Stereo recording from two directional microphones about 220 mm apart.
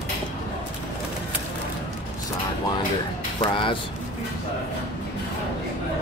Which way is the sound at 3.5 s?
25° left (ahead or behind).